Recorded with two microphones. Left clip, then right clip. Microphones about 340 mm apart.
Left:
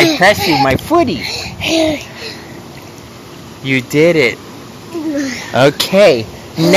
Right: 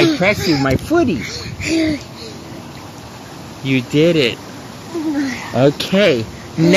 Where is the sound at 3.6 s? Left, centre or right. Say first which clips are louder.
Left 3 dB; centre.